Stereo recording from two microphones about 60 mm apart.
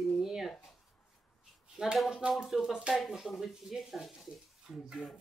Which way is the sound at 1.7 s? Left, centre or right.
Centre.